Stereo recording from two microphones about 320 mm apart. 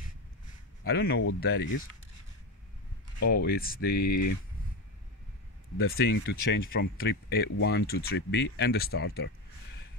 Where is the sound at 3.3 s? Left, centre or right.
Left.